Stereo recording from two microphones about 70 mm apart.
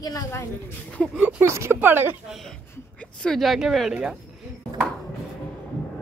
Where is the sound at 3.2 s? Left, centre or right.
Centre.